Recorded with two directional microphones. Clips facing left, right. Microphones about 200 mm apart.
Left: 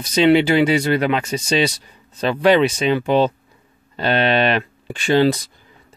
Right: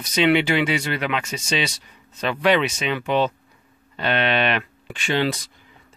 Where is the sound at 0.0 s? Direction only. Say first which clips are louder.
Left 5 dB; 35° left (ahead or behind).